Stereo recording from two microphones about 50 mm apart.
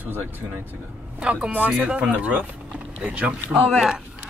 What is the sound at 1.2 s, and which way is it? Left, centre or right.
Speech, right.